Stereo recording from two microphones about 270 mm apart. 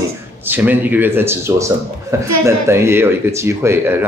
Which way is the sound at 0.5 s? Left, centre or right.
Centre.